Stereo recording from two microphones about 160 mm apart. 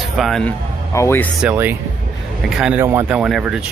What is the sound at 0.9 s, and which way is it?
Speech, 15° left (ahead or behind).